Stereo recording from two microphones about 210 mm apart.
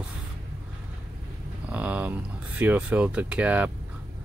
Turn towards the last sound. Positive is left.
turn(degrees=-5)  # may be behind; listen again after turning